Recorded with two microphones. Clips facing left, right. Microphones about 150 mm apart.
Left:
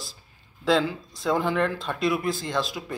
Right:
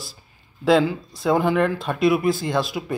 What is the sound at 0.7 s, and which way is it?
Speech, 5° right (ahead or behind).